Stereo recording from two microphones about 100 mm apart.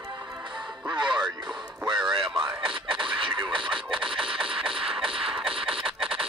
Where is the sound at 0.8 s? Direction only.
50° right (ahead or behind).